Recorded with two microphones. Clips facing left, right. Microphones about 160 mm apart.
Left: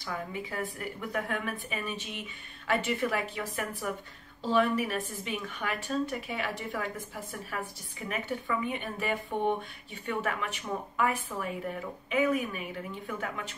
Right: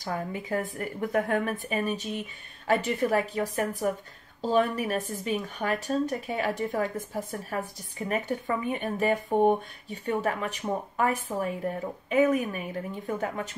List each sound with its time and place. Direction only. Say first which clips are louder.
0.0 s a woman's voice: right 4 dB; 45° right (ahead or behind)